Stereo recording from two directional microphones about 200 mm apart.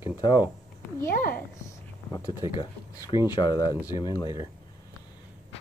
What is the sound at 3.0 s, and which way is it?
Speech, 20° left (ahead or behind).